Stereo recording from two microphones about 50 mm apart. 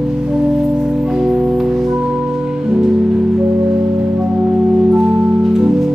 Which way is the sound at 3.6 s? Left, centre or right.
Right.